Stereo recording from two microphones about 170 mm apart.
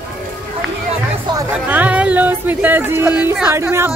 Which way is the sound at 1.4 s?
10° right (ahead or behind).